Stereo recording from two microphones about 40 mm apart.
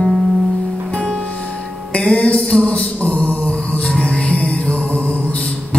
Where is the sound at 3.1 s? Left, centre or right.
Left.